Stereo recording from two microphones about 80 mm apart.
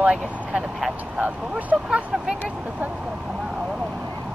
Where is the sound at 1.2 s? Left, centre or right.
Centre.